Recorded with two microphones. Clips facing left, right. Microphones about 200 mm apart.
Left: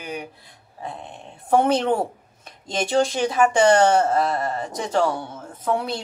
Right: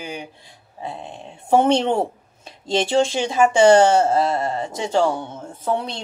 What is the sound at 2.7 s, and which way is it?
Speech, 30° right (ahead or behind).